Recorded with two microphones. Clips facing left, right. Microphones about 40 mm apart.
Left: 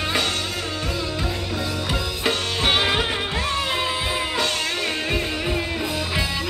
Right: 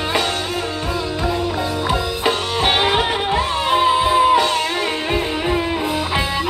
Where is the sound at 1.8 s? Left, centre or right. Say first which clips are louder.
Right 6 dB; centre.